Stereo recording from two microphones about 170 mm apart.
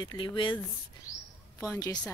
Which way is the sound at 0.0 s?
25° left (ahead or behind).